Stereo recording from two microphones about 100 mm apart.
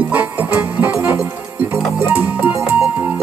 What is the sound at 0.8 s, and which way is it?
Music, 30° right (ahead or behind).